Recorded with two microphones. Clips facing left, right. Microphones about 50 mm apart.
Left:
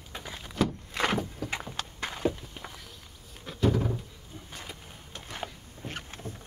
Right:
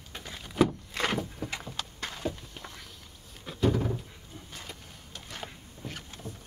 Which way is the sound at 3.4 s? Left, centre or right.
Centre.